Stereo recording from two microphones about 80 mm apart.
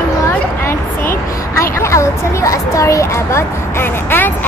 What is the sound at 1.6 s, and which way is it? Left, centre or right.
A woman's voice, left.